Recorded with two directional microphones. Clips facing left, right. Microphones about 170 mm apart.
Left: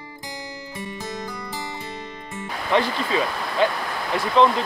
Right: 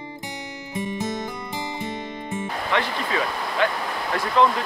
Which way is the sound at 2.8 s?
30° left (ahead or behind).